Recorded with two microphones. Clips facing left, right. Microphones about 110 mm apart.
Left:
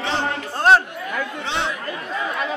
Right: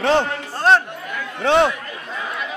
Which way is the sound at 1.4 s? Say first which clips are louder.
Right 13 dB; 50° right (ahead or behind).